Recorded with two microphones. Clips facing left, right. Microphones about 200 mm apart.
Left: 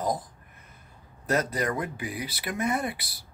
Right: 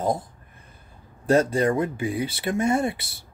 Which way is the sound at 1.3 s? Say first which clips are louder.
Right 7 dB; 30° right (ahead or behind).